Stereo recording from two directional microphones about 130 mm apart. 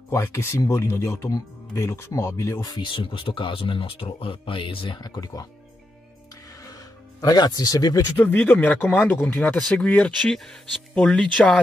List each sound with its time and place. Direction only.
0.1 s speech: 20° left (ahead or behind)
6.6 s music: 25° left (ahead or behind)
8.2 s speech: 15° left (ahead or behind)